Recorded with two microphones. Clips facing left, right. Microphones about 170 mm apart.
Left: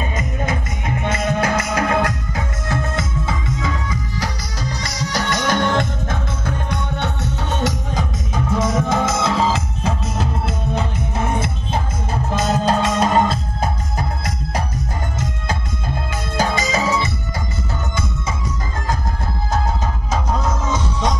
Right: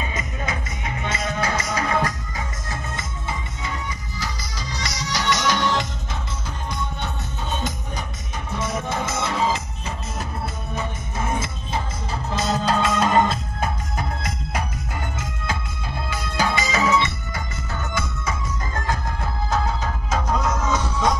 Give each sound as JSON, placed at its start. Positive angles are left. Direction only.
{"t": 0.1, "sound": "music", "side_deg": 50}
{"t": 4.8, "sound": "music", "side_deg": 55}
{"t": 8.5, "sound": "music", "side_deg": 90}
{"t": 16.1, "sound": "music", "side_deg": 45}
{"t": 20.1, "sound": "music", "side_deg": 30}